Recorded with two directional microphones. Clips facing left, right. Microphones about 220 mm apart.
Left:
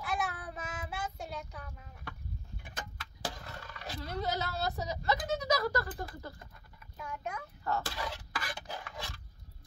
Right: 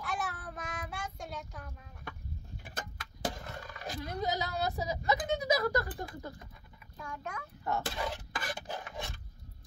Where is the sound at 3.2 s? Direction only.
45° right (ahead or behind).